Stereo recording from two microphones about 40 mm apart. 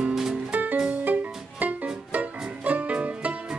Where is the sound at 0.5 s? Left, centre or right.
Right.